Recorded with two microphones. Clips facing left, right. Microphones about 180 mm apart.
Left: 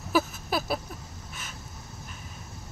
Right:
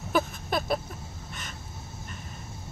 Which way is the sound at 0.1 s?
5° left (ahead or behind).